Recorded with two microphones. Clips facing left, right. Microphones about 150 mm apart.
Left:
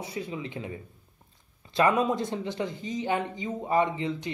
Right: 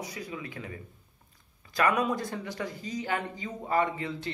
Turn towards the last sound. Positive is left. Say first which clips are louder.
# left 3 dB
turn(degrees=20)  # may be behind; listen again after turning